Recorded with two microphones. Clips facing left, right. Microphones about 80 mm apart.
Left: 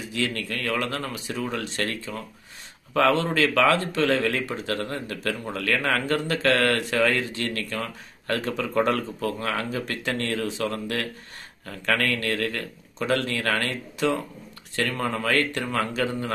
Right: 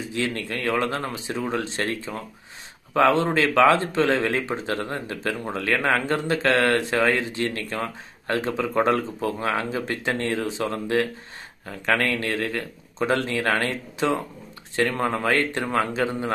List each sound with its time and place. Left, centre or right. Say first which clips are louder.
0.1 s speech: even; right